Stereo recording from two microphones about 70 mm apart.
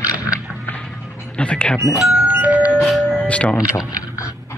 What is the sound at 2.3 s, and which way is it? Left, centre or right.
Music, right.